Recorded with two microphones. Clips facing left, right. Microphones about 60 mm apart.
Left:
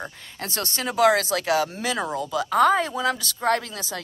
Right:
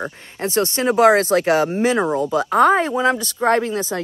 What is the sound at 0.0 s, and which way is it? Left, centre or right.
Speech, right.